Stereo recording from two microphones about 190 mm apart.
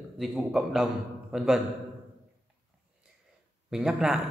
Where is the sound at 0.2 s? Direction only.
Centre (ahead or behind).